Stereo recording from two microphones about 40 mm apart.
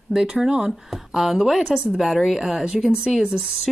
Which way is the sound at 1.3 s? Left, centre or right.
Centre.